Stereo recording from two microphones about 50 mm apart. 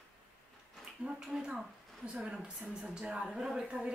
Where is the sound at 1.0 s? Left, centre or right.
Centre.